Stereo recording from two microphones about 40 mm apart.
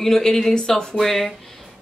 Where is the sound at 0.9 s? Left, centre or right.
Centre.